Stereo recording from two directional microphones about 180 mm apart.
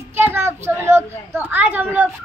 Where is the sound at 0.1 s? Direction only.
15° right (ahead or behind).